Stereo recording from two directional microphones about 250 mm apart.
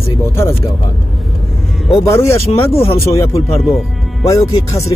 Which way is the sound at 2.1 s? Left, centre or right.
Centre.